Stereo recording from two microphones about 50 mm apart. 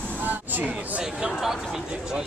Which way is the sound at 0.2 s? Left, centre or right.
Right.